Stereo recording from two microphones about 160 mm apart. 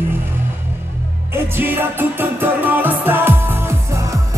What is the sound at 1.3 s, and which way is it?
Music, 15° right (ahead or behind).